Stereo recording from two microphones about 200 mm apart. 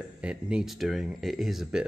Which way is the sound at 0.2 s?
5° right (ahead or behind).